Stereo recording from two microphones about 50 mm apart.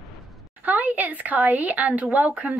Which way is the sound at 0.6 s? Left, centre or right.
Right.